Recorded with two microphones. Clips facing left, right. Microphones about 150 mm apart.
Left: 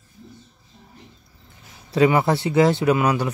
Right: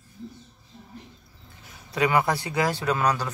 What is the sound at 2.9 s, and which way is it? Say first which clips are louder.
Speech: left 5 dB; 15° left (ahead or behind).